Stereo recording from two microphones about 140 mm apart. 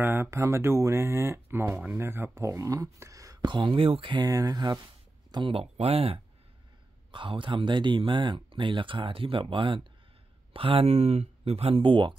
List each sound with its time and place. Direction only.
0.0 s speech: 15° right (ahead or behind)
5.3 s speech: 40° right (ahead or behind)